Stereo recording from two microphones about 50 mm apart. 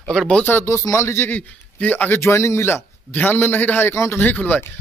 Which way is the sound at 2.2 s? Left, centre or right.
Left.